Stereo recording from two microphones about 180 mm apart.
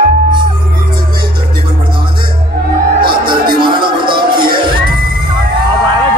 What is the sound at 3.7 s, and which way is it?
Music, 25° right (ahead or behind).